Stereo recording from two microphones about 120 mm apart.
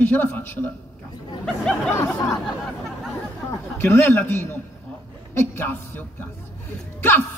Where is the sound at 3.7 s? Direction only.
20° left (ahead or behind).